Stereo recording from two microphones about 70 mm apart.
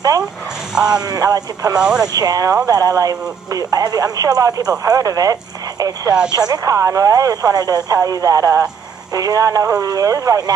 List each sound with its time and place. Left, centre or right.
0.9 s speech: right
1.8 s speech: centre
2.1 s speech: right
9.1 s speech: right